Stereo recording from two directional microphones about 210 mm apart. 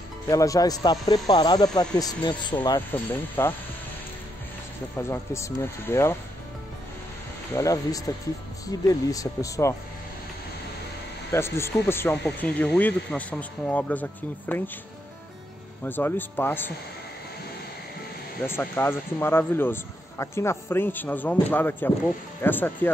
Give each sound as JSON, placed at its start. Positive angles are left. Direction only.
{"t": 0.3, "sound": "speech", "side_deg": 15}
{"t": 2.9, "sound": "speech", "side_deg": 10}
{"t": 4.9, "sound": "speech", "side_deg": 10}
{"t": 7.5, "sound": "speech", "side_deg": 15}
{"t": 11.3, "sound": "speech", "side_deg": 10}
{"t": 15.8, "sound": "speech", "side_deg": 10}
{"t": 18.5, "sound": "speech", "side_deg": 10}